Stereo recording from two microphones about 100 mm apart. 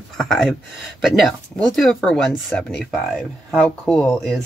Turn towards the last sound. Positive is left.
turn(degrees=5)  # may be behind; listen again after turning